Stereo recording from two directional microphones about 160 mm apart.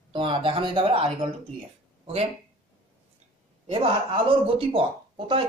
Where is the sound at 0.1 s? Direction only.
30° right (ahead or behind).